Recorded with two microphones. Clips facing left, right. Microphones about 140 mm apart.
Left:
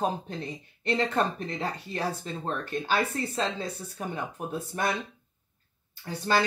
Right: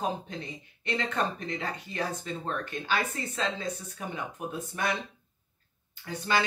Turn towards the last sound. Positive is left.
turn(degrees=35)  # may be behind; listen again after turning